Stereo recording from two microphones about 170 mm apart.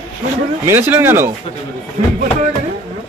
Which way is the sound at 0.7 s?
15° right (ahead or behind).